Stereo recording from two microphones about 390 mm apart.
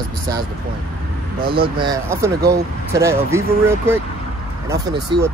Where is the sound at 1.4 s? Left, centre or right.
Right.